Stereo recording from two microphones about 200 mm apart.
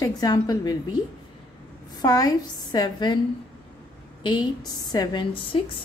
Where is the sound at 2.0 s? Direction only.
20° left (ahead or behind).